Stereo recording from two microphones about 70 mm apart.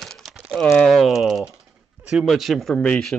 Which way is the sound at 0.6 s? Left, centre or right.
Centre.